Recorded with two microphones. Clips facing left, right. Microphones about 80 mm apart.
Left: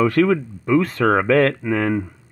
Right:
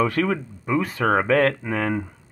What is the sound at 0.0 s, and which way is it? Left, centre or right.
Speech, right.